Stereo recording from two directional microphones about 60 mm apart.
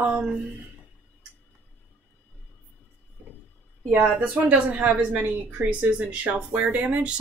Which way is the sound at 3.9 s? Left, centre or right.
Right.